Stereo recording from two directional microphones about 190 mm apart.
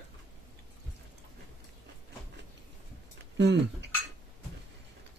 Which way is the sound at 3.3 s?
65° right (ahead or behind).